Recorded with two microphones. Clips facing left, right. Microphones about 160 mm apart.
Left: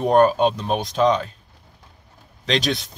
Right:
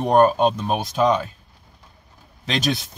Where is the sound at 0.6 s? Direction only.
5° right (ahead or behind).